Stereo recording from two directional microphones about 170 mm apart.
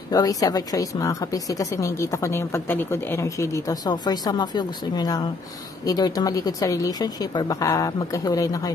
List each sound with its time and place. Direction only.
0.1 s a woman's voice: 20° left (ahead or behind)